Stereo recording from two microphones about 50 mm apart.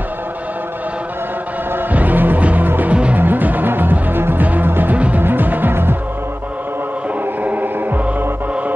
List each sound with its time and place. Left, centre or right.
1.8 s music: right
2.9 s music: right
3.2 s music: right
4.9 s music: right
5.2 s music: right
7.4 s music: right